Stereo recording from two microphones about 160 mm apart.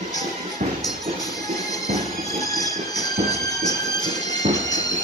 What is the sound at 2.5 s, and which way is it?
Train, 20° left (ahead or behind).